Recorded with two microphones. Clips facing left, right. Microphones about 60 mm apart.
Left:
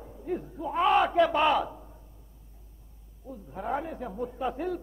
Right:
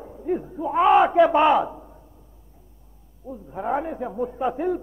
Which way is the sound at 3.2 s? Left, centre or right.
Centre.